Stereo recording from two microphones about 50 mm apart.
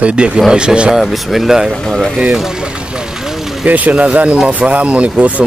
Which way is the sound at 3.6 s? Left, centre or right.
Right.